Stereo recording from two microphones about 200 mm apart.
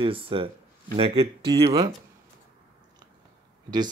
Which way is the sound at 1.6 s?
20° right (ahead or behind).